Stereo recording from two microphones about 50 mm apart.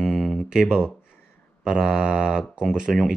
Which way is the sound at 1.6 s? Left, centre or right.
Centre.